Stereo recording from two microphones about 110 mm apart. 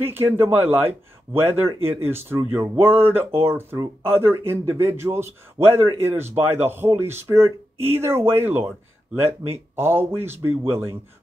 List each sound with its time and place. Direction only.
0.0 s a man's voice: 20° right (ahead or behind)